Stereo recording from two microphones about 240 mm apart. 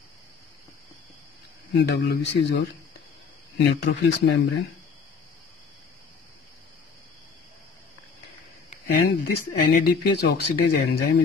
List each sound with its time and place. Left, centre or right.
1.7 s speech: left
3.6 s speech: left
8.6 s speech: left